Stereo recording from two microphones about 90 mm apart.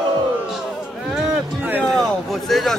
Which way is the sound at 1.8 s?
Centre (ahead or behind).